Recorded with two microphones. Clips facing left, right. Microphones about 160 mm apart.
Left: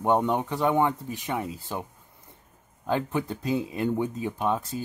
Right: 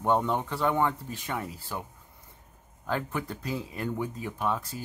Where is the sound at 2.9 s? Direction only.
20° left (ahead or behind).